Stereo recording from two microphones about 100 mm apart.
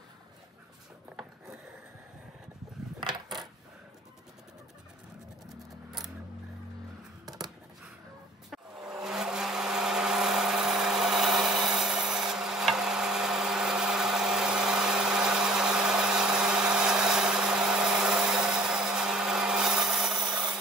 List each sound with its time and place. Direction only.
3.0 s coin: 50° right (ahead or behind)
8.5 s blender: 5° right (ahead or behind)